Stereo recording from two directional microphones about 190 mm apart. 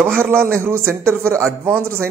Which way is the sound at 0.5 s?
15° right (ahead or behind).